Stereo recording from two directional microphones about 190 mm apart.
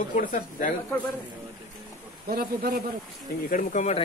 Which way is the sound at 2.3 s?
50° right (ahead or behind).